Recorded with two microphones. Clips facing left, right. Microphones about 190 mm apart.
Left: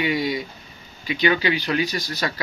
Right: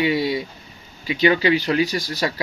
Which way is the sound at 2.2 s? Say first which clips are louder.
Right 4 dB; 25° right (ahead or behind).